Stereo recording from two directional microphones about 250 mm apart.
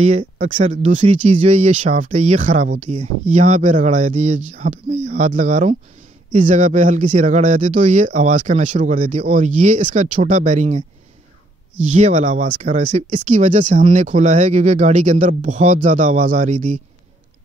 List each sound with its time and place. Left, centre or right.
0.0 s speech: right
11.9 s speech: right